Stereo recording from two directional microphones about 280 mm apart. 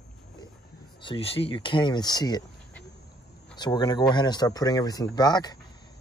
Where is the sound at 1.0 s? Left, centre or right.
Centre.